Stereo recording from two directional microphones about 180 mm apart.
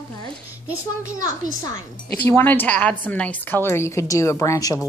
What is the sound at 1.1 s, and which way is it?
A woman's voice, 20° left (ahead or behind).